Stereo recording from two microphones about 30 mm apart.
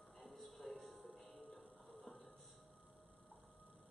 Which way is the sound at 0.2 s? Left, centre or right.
Centre.